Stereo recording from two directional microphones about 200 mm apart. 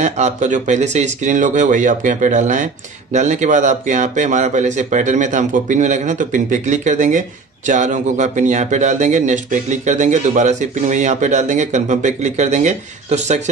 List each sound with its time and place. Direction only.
0.0 s speech: 35° right (ahead or behind)